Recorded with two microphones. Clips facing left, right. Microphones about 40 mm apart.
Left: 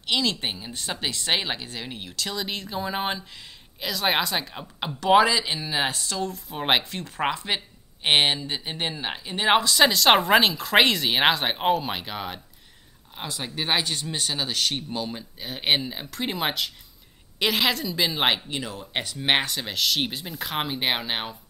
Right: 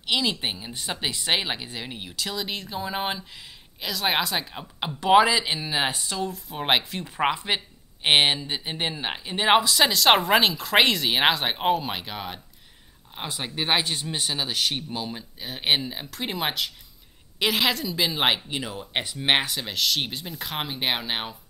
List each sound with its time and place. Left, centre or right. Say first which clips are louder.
0.0 s a woman's voice: even; centre
13.1 s a woman's voice: right 1 dB; centre
18.7 s speech: right 1 dB; centre
19.1 s a woman's voice: even; centre